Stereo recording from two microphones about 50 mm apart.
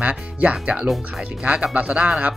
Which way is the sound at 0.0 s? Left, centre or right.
Right.